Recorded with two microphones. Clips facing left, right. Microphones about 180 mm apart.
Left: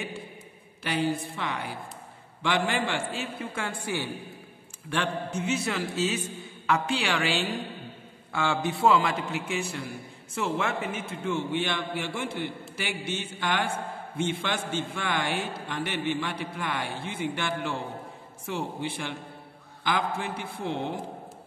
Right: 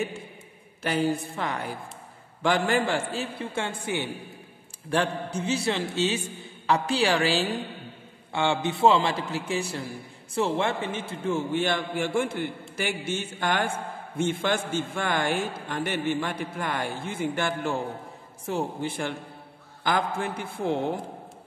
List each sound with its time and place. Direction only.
0.8 s a man's voice: 45° right (ahead or behind); by 4.1 s 20° right (ahead or behind)
4.8 s a man's voice: 40° right (ahead or behind)
8.3 s a man's voice: 25° right (ahead or behind); by 20.8 s 45° right (ahead or behind)